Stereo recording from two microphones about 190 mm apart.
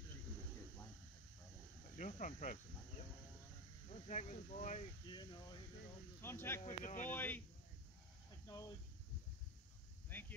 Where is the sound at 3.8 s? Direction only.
40° left (ahead or behind).